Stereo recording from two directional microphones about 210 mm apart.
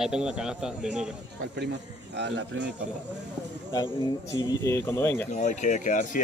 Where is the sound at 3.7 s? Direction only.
20° left (ahead or behind).